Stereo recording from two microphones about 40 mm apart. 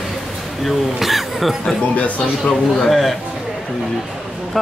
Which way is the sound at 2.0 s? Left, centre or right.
Left.